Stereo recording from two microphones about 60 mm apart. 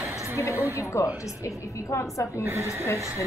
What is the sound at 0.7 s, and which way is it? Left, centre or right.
A woman's voice, left.